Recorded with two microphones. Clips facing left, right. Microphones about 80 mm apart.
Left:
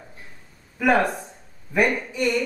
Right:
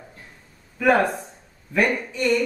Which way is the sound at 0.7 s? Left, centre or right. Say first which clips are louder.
Right 1 dB; centre.